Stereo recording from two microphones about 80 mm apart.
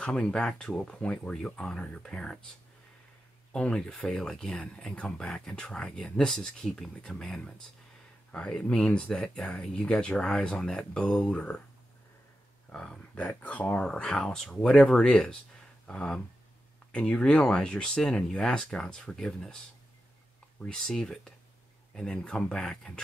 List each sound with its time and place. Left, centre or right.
0.0 s speech: centre
3.5 s speech: centre
12.7 s speech: centre
20.6 s speech: centre